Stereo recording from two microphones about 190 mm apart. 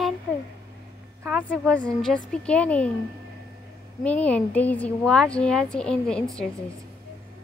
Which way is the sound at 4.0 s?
5° left (ahead or behind).